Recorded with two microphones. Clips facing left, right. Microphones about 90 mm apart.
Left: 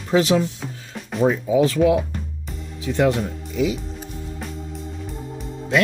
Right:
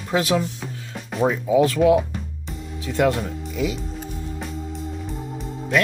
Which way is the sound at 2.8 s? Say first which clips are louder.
Left 1 dB; 20° left (ahead or behind).